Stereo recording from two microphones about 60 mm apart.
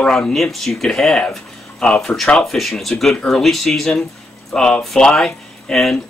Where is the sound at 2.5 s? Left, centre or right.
Centre.